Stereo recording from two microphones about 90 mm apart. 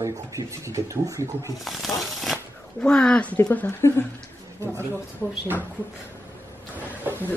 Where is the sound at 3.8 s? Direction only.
30° left (ahead or behind).